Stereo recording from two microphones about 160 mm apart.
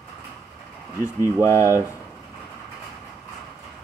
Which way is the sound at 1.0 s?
20° left (ahead or behind).